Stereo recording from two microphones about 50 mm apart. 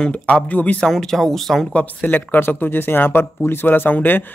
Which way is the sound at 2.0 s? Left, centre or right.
Left.